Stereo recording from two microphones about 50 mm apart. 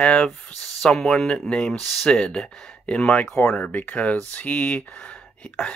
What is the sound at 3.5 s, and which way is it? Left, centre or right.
Speech, left.